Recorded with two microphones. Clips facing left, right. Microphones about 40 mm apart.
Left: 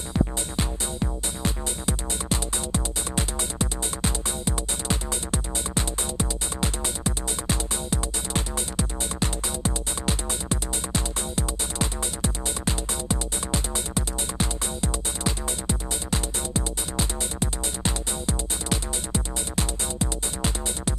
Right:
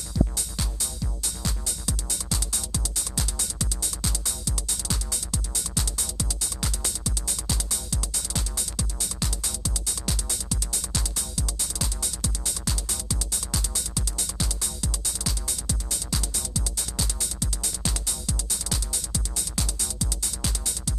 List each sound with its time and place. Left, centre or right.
0.1 s music: left